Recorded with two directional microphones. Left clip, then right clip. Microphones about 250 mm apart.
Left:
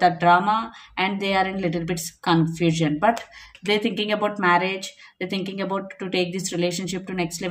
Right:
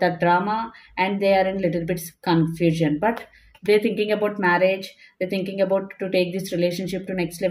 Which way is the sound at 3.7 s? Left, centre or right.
Centre.